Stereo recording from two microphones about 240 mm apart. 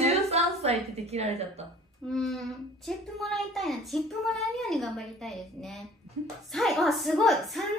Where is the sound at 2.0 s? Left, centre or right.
Centre.